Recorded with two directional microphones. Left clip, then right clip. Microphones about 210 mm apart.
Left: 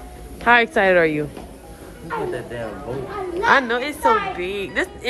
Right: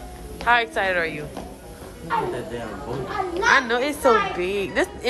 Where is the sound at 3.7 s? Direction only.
5° right (ahead or behind).